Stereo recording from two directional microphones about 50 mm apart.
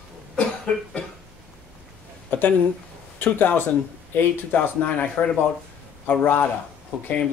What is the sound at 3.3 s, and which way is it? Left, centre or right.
Speech, left.